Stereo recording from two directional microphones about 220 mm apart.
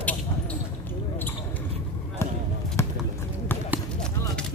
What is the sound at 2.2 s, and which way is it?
Basketball bounce, 10° left (ahead or behind).